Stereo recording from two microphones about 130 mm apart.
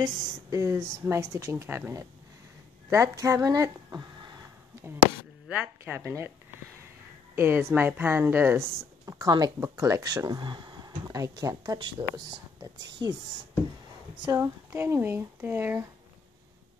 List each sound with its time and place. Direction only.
0.0 s a woman's voice: 25° right (ahead or behind)
5.5 s speech: 15° right (ahead or behind)
7.3 s speech: 20° right (ahead or behind); by 13.2 s 35° right (ahead or behind)
14.2 s speech: 25° right (ahead or behind)